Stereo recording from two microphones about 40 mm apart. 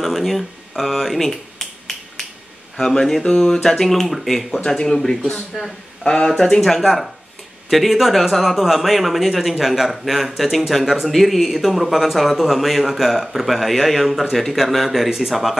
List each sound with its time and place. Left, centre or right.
0.0 s finger snapping: centre
2.8 s speech: centre
5.5 s speech: centre
6.0 s speech: centre
6.3 s speech: centre